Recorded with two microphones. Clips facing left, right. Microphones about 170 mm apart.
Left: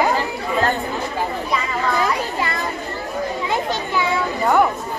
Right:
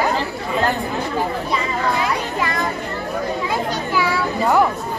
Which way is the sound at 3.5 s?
25° left (ahead or behind).